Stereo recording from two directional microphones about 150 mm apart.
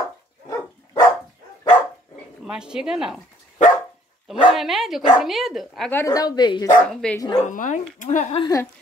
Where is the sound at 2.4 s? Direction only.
5° right (ahead or behind).